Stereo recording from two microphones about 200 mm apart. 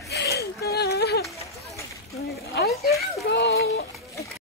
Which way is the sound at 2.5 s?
50° left (ahead or behind).